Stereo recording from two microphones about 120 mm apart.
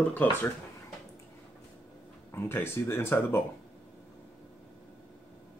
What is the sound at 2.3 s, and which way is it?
Speech, 20° left (ahead or behind).